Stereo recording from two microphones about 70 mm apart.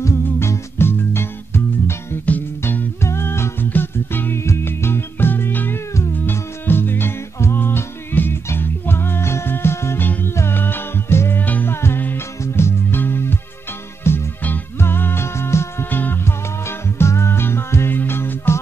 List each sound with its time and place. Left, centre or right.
0.0 s music: left
3.0 s music: left